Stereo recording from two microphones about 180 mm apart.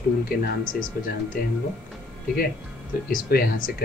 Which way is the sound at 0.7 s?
50° left (ahead or behind).